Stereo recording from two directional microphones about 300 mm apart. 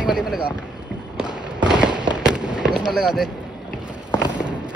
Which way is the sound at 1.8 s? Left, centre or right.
Centre.